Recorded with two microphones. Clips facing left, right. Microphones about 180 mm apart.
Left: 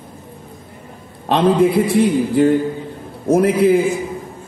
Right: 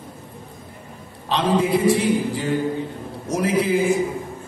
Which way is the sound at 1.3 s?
55° left (ahead or behind).